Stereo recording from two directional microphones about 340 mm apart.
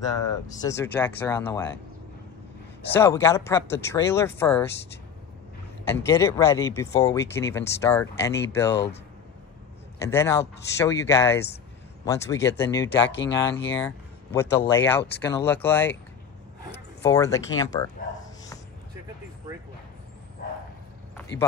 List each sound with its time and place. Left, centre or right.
0.5 s speech: centre
2.9 s speech: centre
6.0 s speech: centre
9.9 s speech: centre
13.0 s speech: left
13.7 s speech: centre
17.0 s speech: centre